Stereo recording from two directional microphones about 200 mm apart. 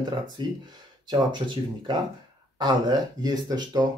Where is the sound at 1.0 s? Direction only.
20° right (ahead or behind).